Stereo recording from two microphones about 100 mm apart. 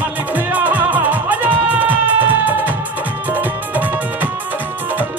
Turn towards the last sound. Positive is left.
turn(degrees=-20)  # may be behind; listen again after turning